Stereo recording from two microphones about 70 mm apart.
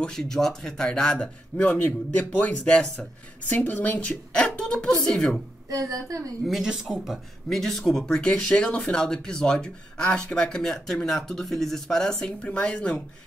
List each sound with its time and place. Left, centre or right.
0.0 s speech: centre
1.1 s speech: left
5.7 s a woman's voice: right
6.4 s speech: centre
7.4 s speech: centre